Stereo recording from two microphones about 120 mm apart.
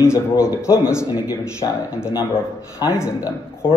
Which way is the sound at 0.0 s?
25° left (ahead or behind).